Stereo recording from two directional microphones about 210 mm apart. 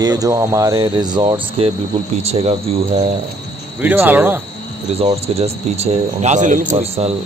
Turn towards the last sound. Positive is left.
turn(degrees=-30)  # may be behind; listen again after turning